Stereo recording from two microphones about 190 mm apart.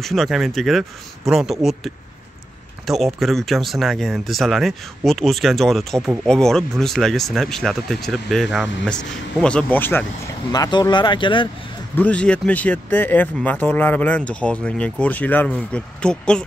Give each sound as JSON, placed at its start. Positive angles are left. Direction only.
{"t": 0.0, "sound": "speech", "side_deg": 0}
{"t": 2.9, "sound": "speech", "side_deg": 0}
{"t": 11.9, "sound": "speech", "side_deg": 10}